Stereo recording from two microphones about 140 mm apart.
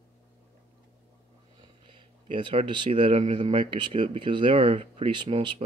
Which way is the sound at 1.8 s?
40° right (ahead or behind).